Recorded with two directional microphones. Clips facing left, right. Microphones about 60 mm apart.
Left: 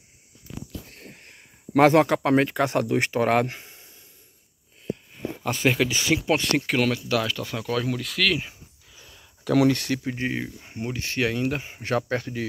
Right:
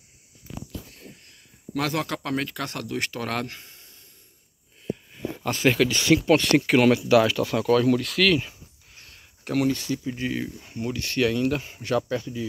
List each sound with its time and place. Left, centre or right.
0.8 s sniff: left
1.3 s speech: left
5.4 s speech: centre
6.6 s speech: centre
7.4 s speech: centre
9.7 s speech: left
10.1 s speech: left
11.8 s speech: left
12.2 s speech: left